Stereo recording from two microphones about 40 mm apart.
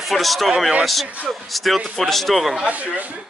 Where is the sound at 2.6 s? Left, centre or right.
Right.